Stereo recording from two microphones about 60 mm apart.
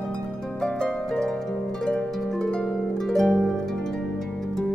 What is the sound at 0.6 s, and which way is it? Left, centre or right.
Harp, centre.